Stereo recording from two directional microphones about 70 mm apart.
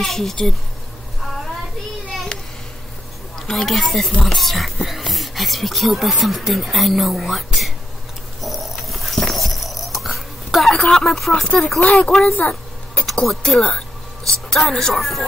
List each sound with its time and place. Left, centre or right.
0.0 s speech: centre
3.3 s speech: centre
8.4 s dog: centre
12.3 s speech: left
12.9 s a sound: centre
13.7 s speech: centre